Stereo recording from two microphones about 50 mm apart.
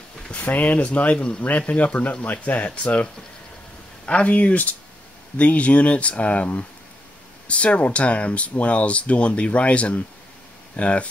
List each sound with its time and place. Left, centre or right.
0.3 s speech: left
1.1 s speech: centre